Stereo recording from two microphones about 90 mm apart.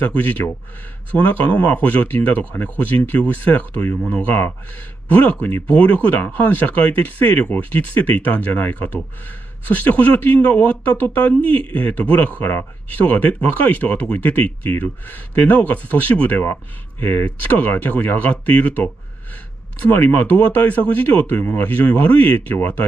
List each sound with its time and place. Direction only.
0.1 s speech: 15° left (ahead or behind)
19.9 s speech: 20° left (ahead or behind)